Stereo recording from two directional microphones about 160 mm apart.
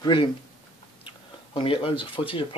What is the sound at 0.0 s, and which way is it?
Speech, 30° left (ahead or behind).